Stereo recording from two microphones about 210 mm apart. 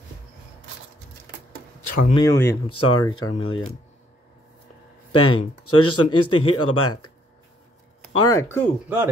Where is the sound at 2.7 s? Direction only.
90° left.